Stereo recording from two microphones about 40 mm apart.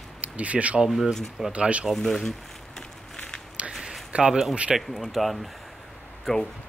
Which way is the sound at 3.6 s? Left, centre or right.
Right.